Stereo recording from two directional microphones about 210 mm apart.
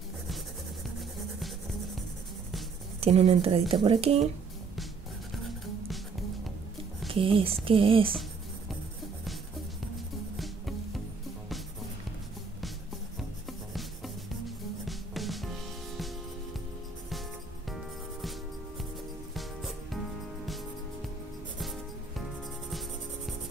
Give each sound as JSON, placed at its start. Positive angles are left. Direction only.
{"t": 3.0, "sound": "speech", "side_deg": -30}
{"t": 7.1, "sound": "speech", "side_deg": -25}
{"t": 10.3, "sound": "music", "side_deg": 0}
{"t": 13.5, "sound": "music", "side_deg": 0}
{"t": 19.3, "sound": "music", "side_deg": 0}
{"t": 22.7, "sound": "cricket", "side_deg": 0}